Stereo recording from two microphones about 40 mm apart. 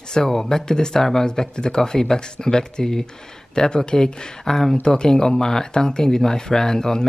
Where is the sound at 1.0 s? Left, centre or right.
Centre.